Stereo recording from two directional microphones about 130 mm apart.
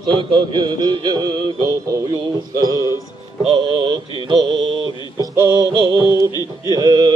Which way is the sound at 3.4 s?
40° right (ahead or behind).